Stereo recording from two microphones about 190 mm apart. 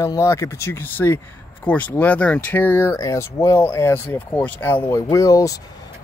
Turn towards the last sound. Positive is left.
turn(degrees=15)  # may be behind; listen again after turning